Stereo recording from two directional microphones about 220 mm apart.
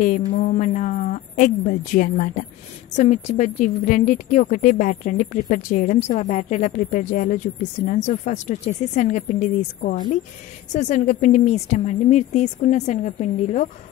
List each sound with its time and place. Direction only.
0.3 s a woman's voice: 35° left (ahead or behind)